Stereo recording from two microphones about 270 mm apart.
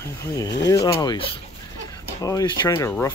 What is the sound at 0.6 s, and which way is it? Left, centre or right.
Speech, centre.